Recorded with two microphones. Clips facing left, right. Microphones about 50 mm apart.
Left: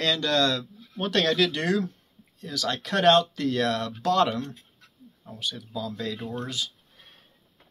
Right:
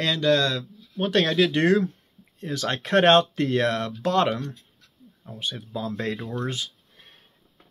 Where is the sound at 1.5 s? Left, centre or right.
Right.